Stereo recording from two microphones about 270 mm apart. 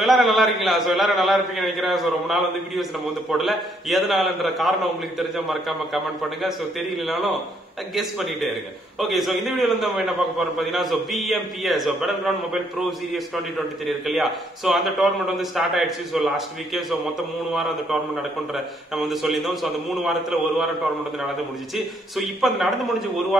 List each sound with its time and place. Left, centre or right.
0.0 s a man's voice: centre
7.1 s a man's voice: centre
13.8 s a man's voice: centre
21.7 s a man's voice: centre